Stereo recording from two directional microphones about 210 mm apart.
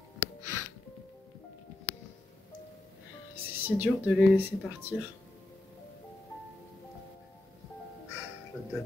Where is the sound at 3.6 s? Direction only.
10° right (ahead or behind).